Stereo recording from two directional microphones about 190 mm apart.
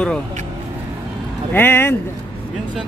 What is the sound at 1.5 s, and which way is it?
Speech, 10° left (ahead or behind).